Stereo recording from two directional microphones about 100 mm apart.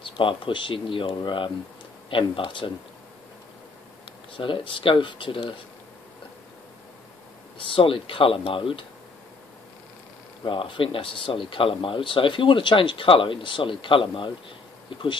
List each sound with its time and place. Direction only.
0.0 s speech: 60° left (ahead or behind)
4.4 s speech: 55° left (ahead or behind)
7.5 s speech: 60° left (ahead or behind)
10.4 s speech: 60° left (ahead or behind)